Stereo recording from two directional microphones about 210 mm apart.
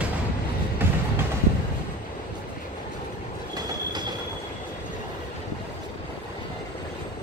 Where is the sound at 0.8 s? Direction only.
10° right (ahead or behind).